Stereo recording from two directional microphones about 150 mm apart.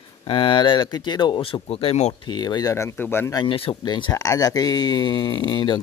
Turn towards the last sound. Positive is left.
turn(degrees=30)  # may be behind; listen again after turning